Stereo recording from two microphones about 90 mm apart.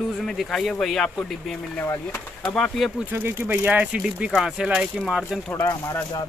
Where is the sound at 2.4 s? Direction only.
5° left (ahead or behind).